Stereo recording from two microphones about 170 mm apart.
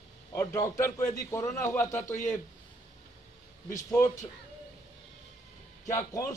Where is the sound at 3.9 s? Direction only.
15° left (ahead or behind).